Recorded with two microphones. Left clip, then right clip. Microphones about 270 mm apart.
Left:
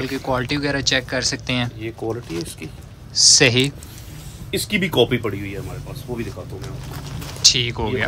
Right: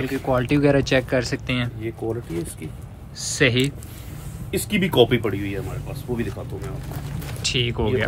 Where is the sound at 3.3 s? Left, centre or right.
Centre.